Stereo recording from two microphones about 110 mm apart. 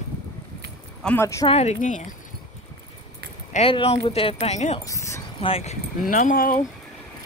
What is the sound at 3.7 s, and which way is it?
Speech, 65° left (ahead or behind).